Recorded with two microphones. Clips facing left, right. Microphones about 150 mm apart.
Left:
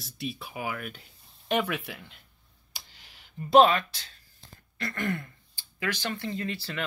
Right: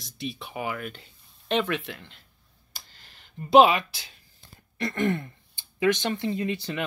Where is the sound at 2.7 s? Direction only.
15° left (ahead or behind).